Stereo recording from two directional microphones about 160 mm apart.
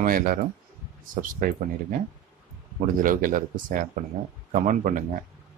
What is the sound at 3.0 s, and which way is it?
Speech, 60° right (ahead or behind).